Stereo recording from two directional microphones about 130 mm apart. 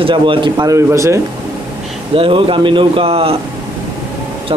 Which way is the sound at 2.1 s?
45° right (ahead or behind).